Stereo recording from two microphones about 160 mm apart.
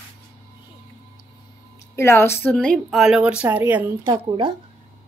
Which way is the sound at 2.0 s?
15° left (ahead or behind).